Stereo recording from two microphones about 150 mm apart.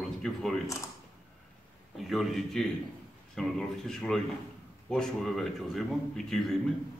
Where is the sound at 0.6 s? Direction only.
20° left (ahead or behind).